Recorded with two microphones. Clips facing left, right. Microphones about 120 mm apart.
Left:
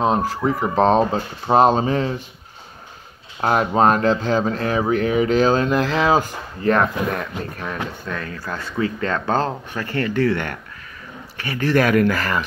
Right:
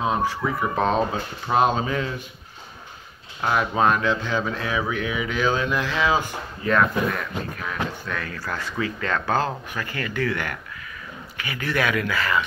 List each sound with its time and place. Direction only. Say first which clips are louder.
0.0 s speech: left 4 dB; 35° left (ahead or behind)
3.3 s speech: left 4 dB; 40° left (ahead or behind)